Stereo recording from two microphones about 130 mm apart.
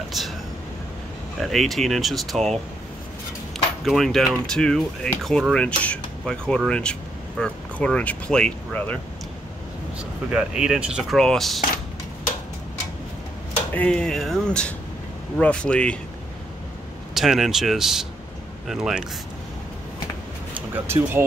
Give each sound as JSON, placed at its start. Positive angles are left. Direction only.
{"t": 1.4, "sound": "speech", "side_deg": 0}
{"t": 3.8, "sound": "speech", "side_deg": 0}
{"t": 9.9, "sound": "speech", "side_deg": -5}
{"t": 13.7, "sound": "speech", "side_deg": 5}
{"t": 17.1, "sound": "speech", "side_deg": 0}
{"t": 20.5, "sound": "speech", "side_deg": -15}